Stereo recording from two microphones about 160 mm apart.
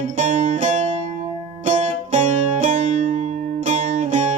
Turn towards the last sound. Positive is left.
turn(degrees=-50)  # may be behind; listen again after turning